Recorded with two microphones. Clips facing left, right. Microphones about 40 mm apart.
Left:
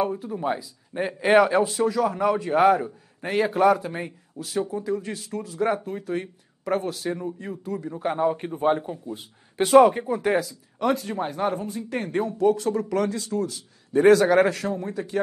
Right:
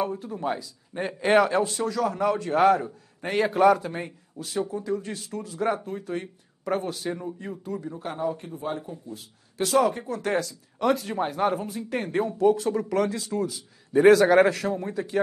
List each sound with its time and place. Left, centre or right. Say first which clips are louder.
0.0 s a man's voice: left 3 dB; centre
7.9 s a man's voice: left 7 dB; centre
8.2 s a man's voice: left 6 dB; left; by 15.1 s centre